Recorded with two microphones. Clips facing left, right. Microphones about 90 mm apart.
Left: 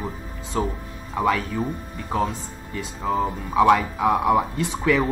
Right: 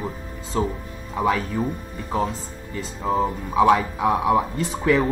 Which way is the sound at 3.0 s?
5° right (ahead or behind).